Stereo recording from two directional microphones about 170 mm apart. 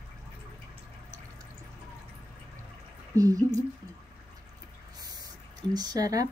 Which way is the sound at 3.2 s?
20° right (ahead or behind).